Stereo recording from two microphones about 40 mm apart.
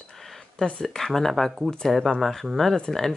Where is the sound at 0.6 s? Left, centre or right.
Centre.